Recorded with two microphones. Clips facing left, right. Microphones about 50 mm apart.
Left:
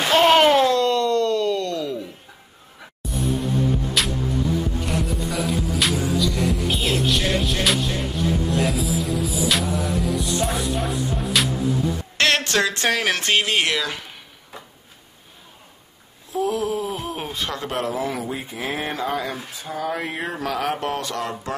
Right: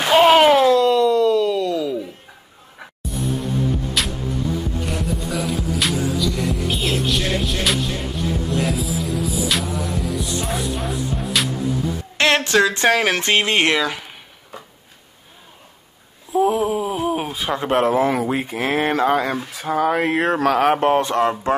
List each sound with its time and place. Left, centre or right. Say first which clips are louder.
0.1 s a sound: right 3 dB; centre
3.0 s music: even; centre
4.8 s music: even; centre
12.2 s a sound: right 4 dB; centre
12.8 s speech: right 4 dB; right
13.7 s speech: right 4 dB; centre
16.3 s a sound: right 5 dB; right
17.6 s speech: right 10 dB; right
18.3 s speech: right 7 dB; right